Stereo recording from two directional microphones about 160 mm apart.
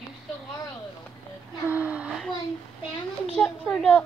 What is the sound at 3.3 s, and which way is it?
Speech, 5° left (ahead or behind).